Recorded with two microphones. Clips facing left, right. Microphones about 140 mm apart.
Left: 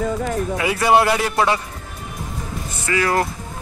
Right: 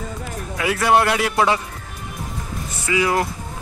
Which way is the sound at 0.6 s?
Centre (ahead or behind).